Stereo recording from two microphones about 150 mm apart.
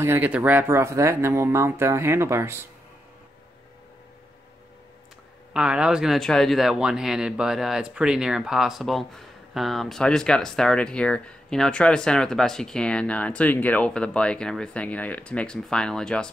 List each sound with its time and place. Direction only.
0.0 s speech: 15° right (ahead or behind)
5.5 s a man's voice: 5° right (ahead or behind)